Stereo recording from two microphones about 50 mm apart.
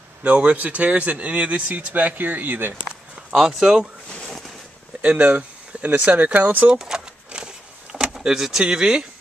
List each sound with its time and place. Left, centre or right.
0.2 s speech: right
3.3 s speech: centre
5.0 s speech: right
6.7 s a sound: centre
8.6 s speech: centre